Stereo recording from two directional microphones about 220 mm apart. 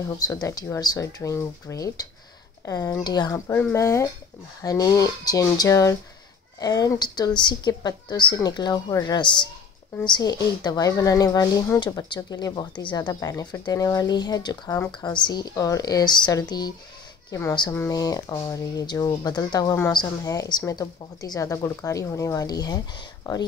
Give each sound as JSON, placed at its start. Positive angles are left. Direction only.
{"t": 0.2, "sound": "a woman's voice", "side_deg": 15}